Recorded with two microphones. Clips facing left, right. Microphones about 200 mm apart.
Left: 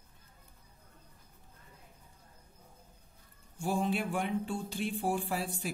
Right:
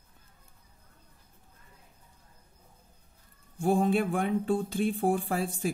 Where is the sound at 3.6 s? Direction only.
50° right (ahead or behind).